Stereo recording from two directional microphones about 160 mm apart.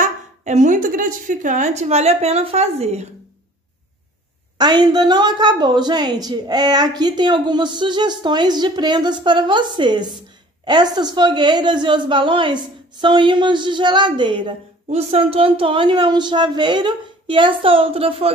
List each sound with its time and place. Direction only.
0.0 s a woman's voice: 50° right (ahead or behind)
4.6 s a woman's voice: 25° right (ahead or behind)
14.9 s speech: 40° right (ahead or behind)